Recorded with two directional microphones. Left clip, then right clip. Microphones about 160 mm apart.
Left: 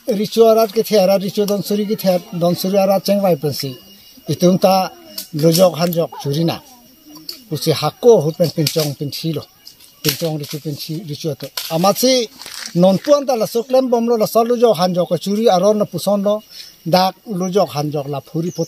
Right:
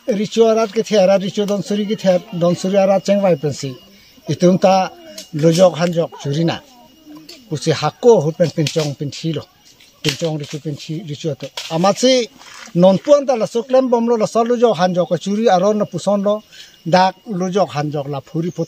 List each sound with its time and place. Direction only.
0.1 s speech: 5° left (ahead or behind)
2.4 s speech: 20° right (ahead or behind)
2.7 s speech: 5° left (ahead or behind)